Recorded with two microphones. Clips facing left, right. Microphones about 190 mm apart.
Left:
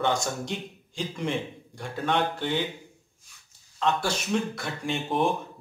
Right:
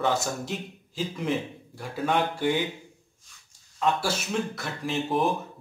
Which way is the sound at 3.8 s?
5° right (ahead or behind).